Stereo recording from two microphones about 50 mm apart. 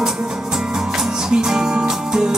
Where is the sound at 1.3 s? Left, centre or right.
Centre.